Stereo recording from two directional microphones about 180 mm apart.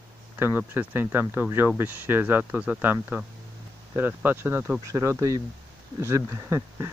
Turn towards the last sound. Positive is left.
turn(degrees=-15)  # may be behind; listen again after turning